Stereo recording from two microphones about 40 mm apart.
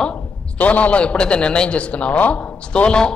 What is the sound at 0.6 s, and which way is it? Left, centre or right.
A man's voice, left.